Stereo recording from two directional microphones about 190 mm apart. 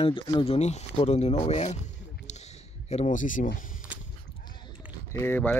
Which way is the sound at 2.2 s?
35° left (ahead or behind).